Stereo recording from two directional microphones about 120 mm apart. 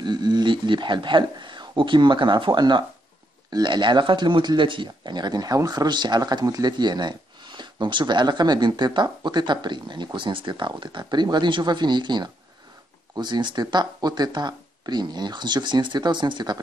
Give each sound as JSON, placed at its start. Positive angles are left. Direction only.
{"t": 0.0, "sound": "speech", "side_deg": -35}